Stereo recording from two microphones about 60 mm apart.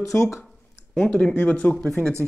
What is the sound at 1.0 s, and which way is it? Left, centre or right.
Speech, left.